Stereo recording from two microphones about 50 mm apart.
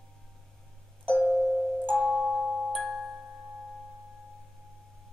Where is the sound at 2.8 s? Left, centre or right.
Centre.